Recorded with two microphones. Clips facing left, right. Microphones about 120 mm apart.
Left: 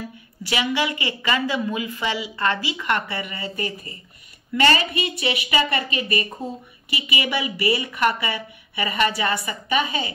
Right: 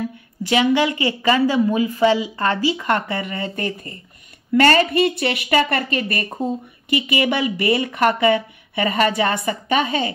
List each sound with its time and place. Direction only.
0.5 s a woman's voice: 45° right (ahead or behind)